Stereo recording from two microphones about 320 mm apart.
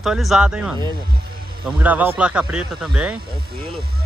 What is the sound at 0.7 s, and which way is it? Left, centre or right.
Speech, centre.